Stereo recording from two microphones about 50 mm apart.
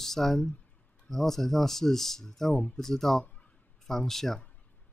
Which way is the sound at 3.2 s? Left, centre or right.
Left.